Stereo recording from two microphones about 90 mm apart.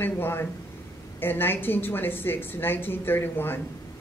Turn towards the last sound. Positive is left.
turn(degrees=25)  # may be behind; listen again after turning